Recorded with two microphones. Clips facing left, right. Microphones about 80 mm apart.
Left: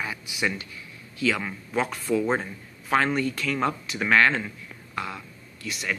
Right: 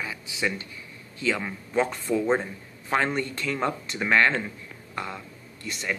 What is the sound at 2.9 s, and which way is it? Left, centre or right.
Speech, centre.